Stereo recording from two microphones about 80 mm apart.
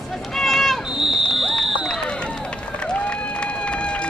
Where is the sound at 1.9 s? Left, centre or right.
Centre.